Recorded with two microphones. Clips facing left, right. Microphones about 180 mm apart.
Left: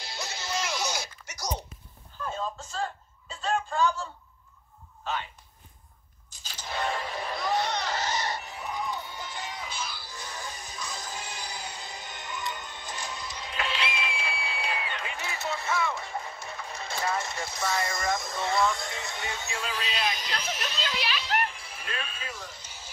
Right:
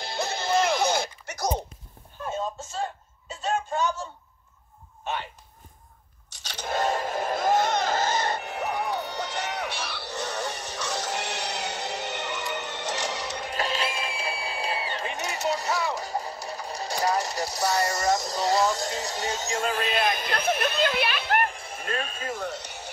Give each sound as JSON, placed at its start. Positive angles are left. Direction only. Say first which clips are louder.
{"t": 0.0, "sound": "music", "louder": "right 8 dB", "side_deg": -55}
{"t": 2.8, "sound": "a sound", "louder": "right 1 dB", "side_deg": -20}
{"t": 6.4, "sound": "scrape", "louder": "right 7 dB", "side_deg": -70}
{"t": 6.7, "sound": "music", "louder": "right 5 dB", "side_deg": -45}
{"t": 13.5, "sound": "music", "louder": "right 3 dB", "side_deg": -40}